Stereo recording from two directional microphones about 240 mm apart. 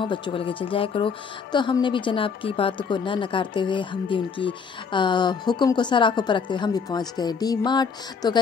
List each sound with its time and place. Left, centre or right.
0.0 s a woman's voice: centre